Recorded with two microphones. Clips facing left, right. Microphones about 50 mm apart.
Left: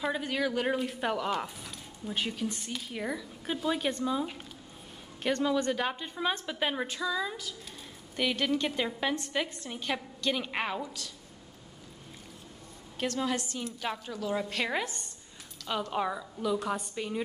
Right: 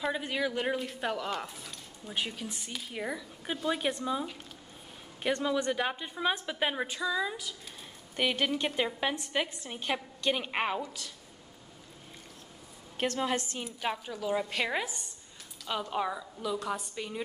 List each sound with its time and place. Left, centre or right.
0.0 s a woman's voice: centre
12.9 s a woman's voice: right
13.6 s a woman's voice: centre